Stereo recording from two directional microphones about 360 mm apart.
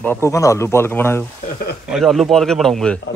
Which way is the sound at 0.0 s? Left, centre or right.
Centre.